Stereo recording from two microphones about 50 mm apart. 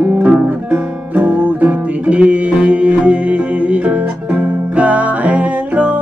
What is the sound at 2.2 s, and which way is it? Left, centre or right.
Music, right.